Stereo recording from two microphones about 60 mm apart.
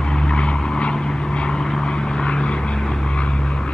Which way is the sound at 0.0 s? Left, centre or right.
Centre.